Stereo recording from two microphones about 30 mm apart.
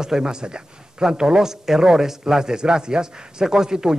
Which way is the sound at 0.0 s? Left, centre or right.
Right.